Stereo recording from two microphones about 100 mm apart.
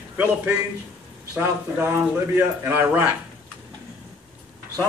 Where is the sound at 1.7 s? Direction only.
25° right (ahead or behind).